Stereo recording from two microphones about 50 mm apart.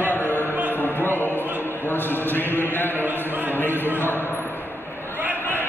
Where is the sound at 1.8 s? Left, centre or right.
Left.